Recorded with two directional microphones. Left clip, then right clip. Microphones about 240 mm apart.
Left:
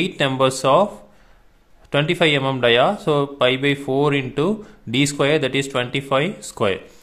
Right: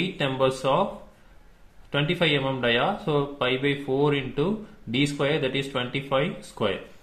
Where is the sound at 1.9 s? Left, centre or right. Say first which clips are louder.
Left 6 dB; left.